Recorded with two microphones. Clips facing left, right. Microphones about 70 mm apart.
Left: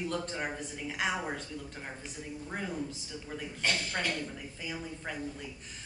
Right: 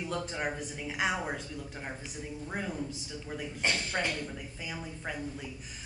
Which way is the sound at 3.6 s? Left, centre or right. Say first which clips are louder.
Right 1 dB; centre.